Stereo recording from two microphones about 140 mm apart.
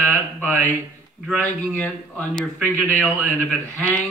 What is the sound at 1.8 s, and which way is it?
A man's voice, 5° left (ahead or behind).